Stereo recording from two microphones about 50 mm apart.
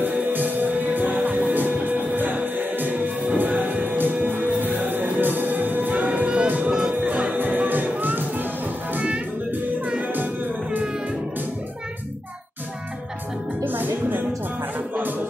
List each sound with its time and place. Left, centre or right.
0.0 s music: right
9.8 s music: right
13.7 s music: right